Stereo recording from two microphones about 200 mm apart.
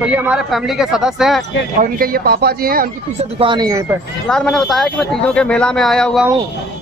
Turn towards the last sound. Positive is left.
turn(degrees=5)  # may be behind; listen again after turning